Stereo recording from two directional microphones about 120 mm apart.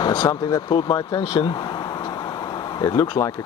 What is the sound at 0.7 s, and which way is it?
Speech, 40° left (ahead or behind).